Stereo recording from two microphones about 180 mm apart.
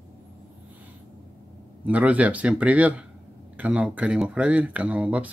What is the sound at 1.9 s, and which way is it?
Speech, 10° right (ahead or behind).